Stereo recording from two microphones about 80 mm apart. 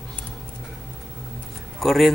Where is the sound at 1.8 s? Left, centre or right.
Centre.